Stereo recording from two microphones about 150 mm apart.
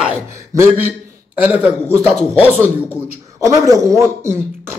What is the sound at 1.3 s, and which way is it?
Speech, 10° right (ahead or behind).